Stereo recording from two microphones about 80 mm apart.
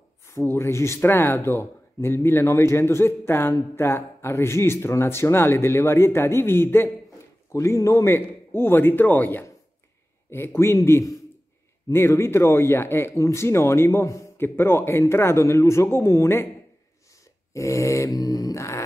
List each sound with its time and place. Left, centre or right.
0.6 s speech: left
7.5 s a man's voice: left
14.4 s speech: left
17.6 s dog: left